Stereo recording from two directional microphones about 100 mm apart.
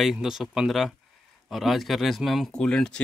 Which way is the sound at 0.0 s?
5° right (ahead or behind).